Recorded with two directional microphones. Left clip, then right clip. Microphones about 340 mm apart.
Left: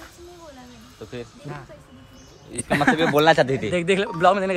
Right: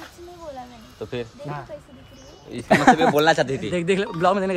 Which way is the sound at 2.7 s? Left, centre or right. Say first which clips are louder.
Right 5 dB; centre.